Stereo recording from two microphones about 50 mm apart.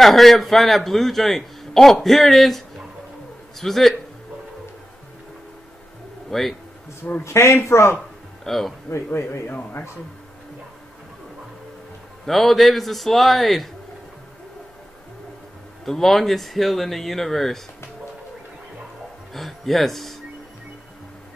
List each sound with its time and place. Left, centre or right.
0.0 s a man's voice: centre
6.3 s a man's voice: centre
7.2 s a man's voice: left
8.5 s a man's voice: centre
8.9 s speech: left
12.3 s a man's voice: centre
15.8 s a man's voice: centre
19.3 s a man's voice: centre